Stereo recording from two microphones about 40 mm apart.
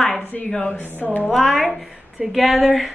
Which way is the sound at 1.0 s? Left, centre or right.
Left.